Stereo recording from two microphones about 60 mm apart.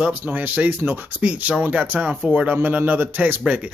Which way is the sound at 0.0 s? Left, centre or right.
Right.